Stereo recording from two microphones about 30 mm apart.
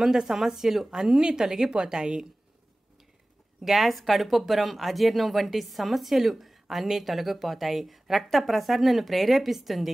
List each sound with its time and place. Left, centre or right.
0.0 s a woman's voice: centre
3.6 s speech: centre